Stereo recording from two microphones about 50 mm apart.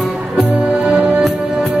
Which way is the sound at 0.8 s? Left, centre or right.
Right.